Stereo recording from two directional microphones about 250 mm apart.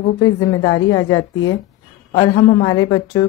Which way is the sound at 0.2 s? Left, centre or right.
Centre.